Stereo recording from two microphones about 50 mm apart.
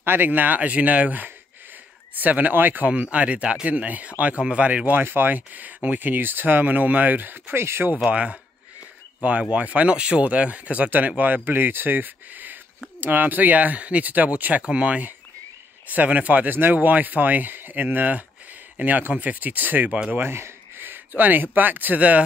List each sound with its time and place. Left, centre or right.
0.0 s speech: right
2.9 s speech: right
5.0 s speech: right
8.0 s speech: right
20.1 s speech: right